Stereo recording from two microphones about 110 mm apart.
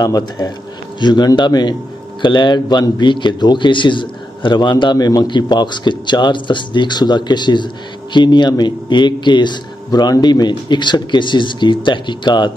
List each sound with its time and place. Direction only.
0.0 s a man's voice: 40° left (ahead or behind)